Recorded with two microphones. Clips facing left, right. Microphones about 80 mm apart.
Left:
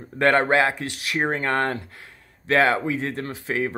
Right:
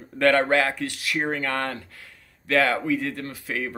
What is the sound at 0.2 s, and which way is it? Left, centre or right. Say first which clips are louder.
Speech: left 1 dB; left.